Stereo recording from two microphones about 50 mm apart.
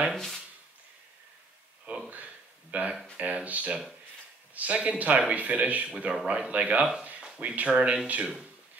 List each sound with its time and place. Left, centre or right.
0.1 s speech: centre
2.0 s a sound: right
3.2 s speech: right
5.9 s speech: centre